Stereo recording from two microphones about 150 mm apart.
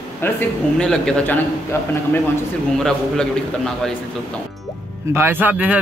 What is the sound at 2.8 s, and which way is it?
Speech, 5° left (ahead or behind).